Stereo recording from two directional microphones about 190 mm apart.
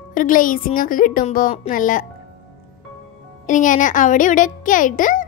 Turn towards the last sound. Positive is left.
turn(degrees=45)  # may be behind; listen again after turning